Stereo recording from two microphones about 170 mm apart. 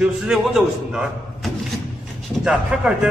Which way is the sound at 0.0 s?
5° right (ahead or behind).